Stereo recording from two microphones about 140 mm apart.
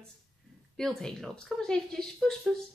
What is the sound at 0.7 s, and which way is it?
Speech, 5° left (ahead or behind).